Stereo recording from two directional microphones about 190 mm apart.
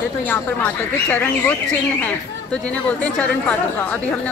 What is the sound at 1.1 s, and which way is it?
Speech, 10° left (ahead or behind).